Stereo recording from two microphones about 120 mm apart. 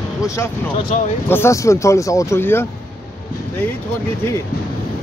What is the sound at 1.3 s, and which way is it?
Speech, 25° left (ahead or behind).